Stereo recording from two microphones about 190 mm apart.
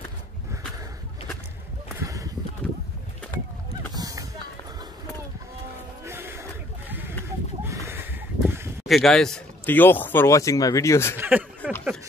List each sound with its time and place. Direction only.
3.9 s run: 20° right (ahead or behind)
6.0 s music: 15° right (ahead or behind)
6.9 s sheep: 10° right (ahead or behind)
7.6 s a sound: 15° right (ahead or behind)
8.8 s speech: centre (ahead or behind)
11.1 s speech: 10° right (ahead or behind)